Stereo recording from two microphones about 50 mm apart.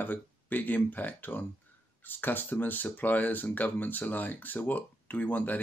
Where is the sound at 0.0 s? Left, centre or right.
Left.